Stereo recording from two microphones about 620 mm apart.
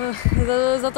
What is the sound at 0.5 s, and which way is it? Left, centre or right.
Speech, left.